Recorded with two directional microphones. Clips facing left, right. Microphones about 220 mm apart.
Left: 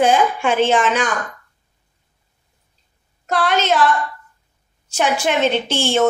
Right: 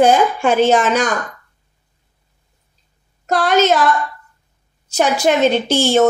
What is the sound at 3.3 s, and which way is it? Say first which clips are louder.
Speech: right 4 dB; 40° right (ahead or behind).